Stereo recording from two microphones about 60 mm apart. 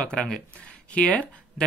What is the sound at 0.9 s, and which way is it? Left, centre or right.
Speech, left.